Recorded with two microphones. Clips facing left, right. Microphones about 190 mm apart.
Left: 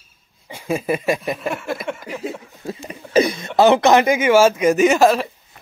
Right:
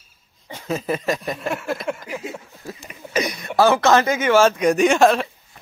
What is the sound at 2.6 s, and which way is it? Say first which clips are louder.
Speech: left 5 dB; 30° left (ahead or behind).